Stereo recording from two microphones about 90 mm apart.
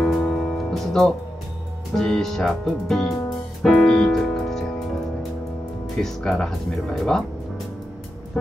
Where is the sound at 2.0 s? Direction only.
5° left (ahead or behind).